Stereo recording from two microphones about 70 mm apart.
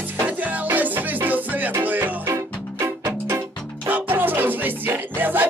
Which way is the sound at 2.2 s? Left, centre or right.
Right.